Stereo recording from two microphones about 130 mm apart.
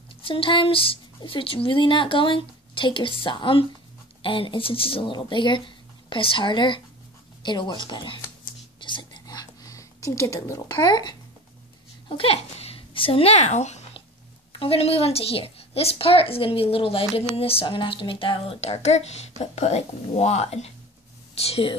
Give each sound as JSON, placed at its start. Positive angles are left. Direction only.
{"t": 0.2, "sound": "speech", "side_deg": 45}
{"t": 8.7, "sound": "whispering", "side_deg": 40}
{"t": 12.1, "sound": "speech", "side_deg": 50}
{"t": 14.5, "sound": "speech", "side_deg": 45}